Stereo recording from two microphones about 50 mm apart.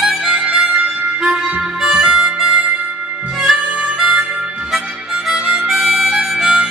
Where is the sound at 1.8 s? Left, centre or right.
Centre.